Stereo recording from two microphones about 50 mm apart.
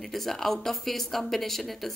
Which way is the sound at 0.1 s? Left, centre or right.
Centre.